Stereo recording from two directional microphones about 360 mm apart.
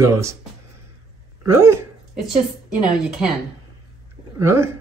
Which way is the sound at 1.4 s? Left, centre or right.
Centre.